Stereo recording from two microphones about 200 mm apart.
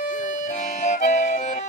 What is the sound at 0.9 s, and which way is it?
Music, 40° left (ahead or behind).